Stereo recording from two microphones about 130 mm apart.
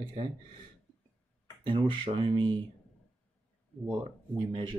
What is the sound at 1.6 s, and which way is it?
Speech, 40° right (ahead or behind).